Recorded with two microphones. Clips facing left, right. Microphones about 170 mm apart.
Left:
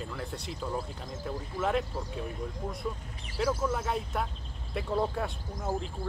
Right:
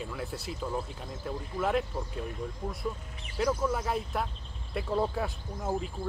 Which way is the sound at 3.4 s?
5° left (ahead or behind).